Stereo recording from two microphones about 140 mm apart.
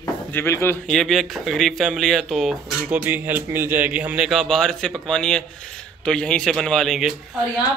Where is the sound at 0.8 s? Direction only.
5° left (ahead or behind).